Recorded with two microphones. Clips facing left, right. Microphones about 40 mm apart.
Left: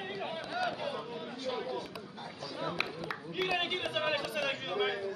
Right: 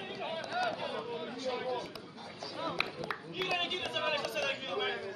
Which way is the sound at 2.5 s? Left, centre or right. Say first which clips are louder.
Even; centre.